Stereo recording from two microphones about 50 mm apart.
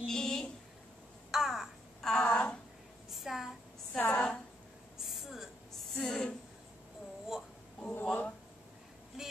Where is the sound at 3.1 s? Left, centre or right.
Centre.